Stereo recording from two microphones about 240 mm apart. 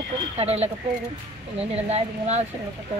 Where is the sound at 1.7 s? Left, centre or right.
Right.